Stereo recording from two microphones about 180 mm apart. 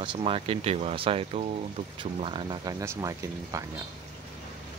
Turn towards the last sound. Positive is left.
turn(degrees=-20)  # may be behind; listen again after turning